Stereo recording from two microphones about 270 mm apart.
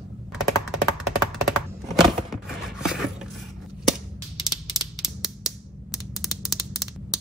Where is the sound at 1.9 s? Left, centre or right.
Centre.